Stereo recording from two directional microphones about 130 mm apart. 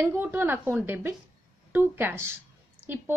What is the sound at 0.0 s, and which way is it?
A woman's voice, 15° right (ahead or behind).